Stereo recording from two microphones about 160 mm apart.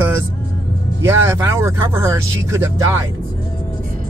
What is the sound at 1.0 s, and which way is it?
Speech, 15° right (ahead or behind).